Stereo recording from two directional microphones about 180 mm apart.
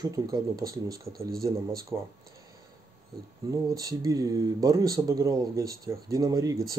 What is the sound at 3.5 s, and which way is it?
Speech, 20° right (ahead or behind).